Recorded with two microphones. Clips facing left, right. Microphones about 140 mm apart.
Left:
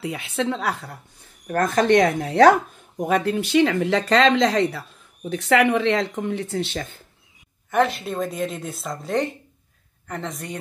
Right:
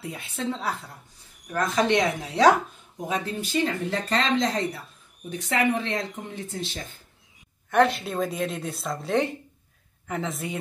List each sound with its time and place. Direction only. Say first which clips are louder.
0.0 s speech: left 6 dB; 90° left; by 0.9 s 70° left (ahead or behind)
1.5 s speech: left 5 dB; 50° left (ahead or behind); by 6.9 s 70° left (ahead or behind)
7.7 s speech: even; centre (ahead or behind)